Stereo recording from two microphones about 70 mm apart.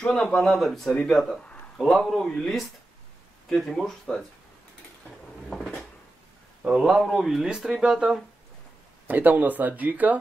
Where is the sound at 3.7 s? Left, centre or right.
Centre.